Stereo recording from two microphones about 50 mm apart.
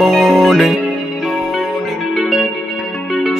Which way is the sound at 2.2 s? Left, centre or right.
Centre.